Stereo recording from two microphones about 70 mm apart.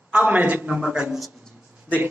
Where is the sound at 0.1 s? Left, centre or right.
Right.